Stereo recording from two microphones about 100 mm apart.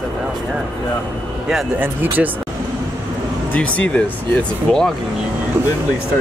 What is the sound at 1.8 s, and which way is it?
Speech, 20° right (ahead or behind).